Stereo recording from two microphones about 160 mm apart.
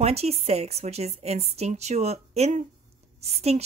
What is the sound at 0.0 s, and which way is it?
A woman's voice, 40° right (ahead or behind).